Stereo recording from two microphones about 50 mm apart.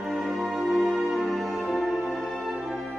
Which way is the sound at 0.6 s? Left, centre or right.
Centre.